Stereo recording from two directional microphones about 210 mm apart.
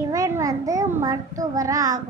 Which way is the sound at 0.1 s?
15° right (ahead or behind).